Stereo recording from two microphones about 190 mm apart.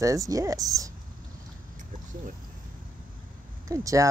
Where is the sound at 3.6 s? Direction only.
15° right (ahead or behind).